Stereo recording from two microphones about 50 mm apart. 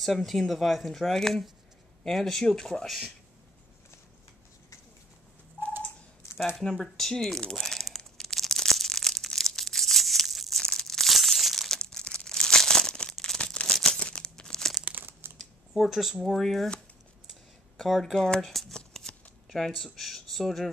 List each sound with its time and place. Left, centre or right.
0.0 s speech: centre
6.5 s speech: centre
7.5 s crumpling: centre
10.6 s crumpling: centre
13.9 s crumpling: centre
15.0 s crumpling: right
15.7 s speech: centre
17.7 s speech: centre
18.8 s shuffling cards: centre